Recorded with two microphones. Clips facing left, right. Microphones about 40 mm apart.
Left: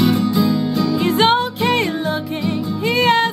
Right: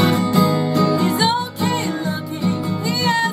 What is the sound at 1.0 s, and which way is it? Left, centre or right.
Music, left.